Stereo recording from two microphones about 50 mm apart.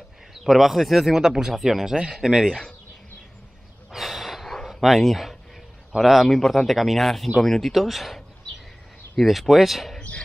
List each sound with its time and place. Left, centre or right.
0.3 s speech: centre
3.9 s snort: centre
4.6 s speech: centre